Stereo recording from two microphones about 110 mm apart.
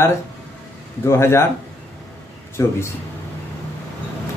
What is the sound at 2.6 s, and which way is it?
Speech, 25° left (ahead or behind).